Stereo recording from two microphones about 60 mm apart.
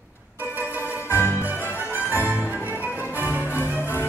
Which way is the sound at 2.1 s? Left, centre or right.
Left.